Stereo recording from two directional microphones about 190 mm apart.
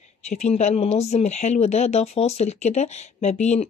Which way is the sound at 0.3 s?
35° left (ahead or behind).